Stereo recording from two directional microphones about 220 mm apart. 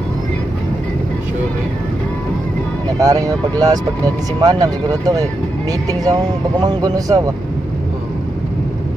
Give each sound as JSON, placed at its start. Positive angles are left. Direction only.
{"t": 3.0, "sound": "speech", "side_deg": -15}